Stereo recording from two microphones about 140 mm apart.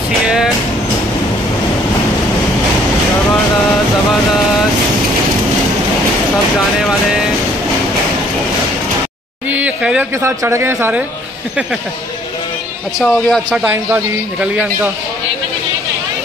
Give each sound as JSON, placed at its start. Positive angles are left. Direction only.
{"t": 6.8, "sound": "music", "side_deg": -5}
{"t": 9.5, "sound": "a sound", "side_deg": -10}
{"t": 10.2, "sound": "a man's voice", "side_deg": -20}
{"t": 13.0, "sound": "music", "side_deg": 5}
{"t": 13.5, "sound": "a man's voice", "side_deg": -10}